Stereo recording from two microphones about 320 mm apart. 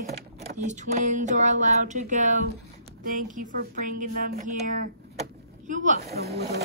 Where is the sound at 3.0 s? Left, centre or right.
Right.